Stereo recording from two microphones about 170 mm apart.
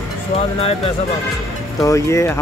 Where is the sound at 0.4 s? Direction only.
35° left (ahead or behind).